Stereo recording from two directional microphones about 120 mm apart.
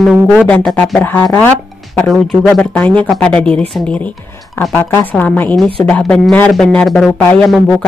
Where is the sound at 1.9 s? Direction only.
5° left (ahead or behind).